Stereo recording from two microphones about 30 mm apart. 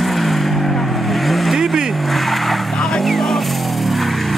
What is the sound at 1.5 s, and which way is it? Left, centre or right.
Vehicle, centre.